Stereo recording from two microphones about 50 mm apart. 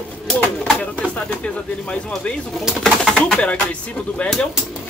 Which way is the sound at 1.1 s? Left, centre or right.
Left.